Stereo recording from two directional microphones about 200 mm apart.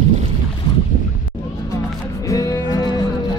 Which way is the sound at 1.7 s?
15° left (ahead or behind).